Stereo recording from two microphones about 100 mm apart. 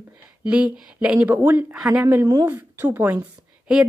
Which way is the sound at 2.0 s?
25° right (ahead or behind).